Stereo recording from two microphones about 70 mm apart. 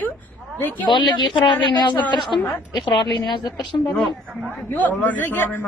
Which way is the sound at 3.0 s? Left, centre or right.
Left.